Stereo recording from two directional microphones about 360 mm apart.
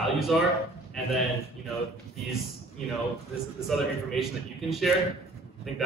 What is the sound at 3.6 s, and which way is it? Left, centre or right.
A man's voice, centre.